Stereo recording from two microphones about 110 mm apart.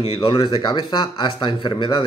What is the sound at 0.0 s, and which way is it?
Speech, 65° left (ahead or behind).